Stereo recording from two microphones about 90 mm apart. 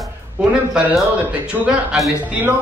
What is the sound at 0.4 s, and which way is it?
Speech, 15° right (ahead or behind).